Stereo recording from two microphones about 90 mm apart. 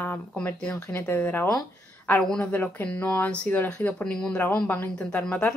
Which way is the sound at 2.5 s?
20° left (ahead or behind).